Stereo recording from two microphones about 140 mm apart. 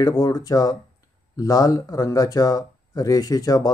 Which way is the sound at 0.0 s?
25° left (ahead or behind).